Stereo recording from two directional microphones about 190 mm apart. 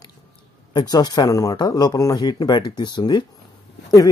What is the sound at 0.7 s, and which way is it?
Speech, 20° left (ahead or behind).